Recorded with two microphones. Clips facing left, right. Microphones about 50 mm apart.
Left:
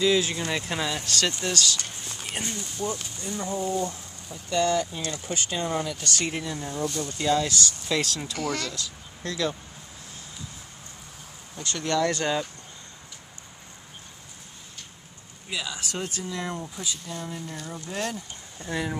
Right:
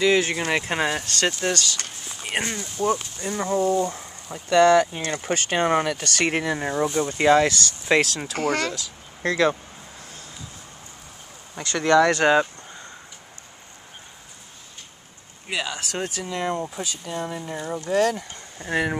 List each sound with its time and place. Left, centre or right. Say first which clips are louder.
0.0 s speech: right 3 dB; right
2.3 s speech: right 7 dB; right
3.9 s speech: right 5 dB; right
6.8 s speech: right 5 dB; right
7.2 s speech: right 7 dB; right
11.7 s speech: right 8 dB; right
15.4 s speech: right 5 dB; right
16.8 s speech: right 5 dB; right
18.6 s speech: right 6 dB; right